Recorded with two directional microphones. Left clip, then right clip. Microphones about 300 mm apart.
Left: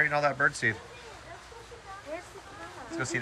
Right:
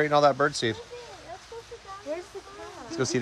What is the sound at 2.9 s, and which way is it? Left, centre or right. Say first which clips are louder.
Speech: right 4 dB; centre.